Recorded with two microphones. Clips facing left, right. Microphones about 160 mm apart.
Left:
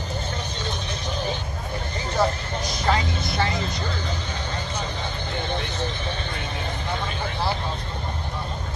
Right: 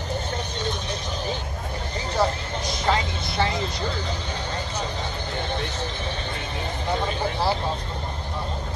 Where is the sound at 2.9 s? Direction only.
25° right (ahead or behind).